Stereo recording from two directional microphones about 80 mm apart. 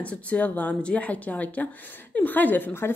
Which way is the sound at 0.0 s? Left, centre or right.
Centre.